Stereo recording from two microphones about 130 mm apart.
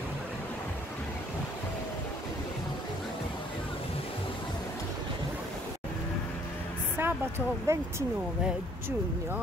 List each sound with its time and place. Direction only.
7.0 s speech: 15° right (ahead or behind)